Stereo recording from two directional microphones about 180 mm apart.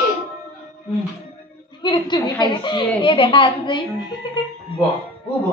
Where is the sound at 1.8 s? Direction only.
25° left (ahead or behind).